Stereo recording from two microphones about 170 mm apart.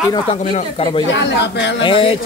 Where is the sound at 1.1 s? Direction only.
90° left.